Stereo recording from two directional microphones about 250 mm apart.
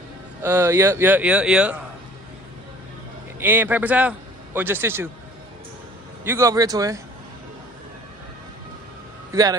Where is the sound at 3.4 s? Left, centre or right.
Centre.